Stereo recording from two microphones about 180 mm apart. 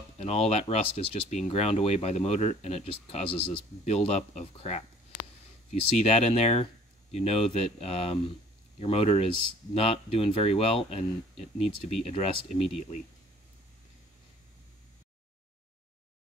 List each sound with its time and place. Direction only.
0.2 s speech: 35° left (ahead or behind)